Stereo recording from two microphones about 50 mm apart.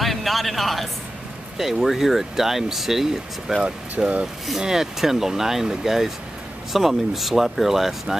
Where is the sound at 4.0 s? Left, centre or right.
Right.